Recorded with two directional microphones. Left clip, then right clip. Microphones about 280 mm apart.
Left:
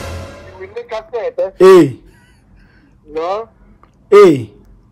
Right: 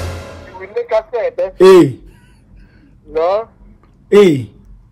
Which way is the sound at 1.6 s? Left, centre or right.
Right.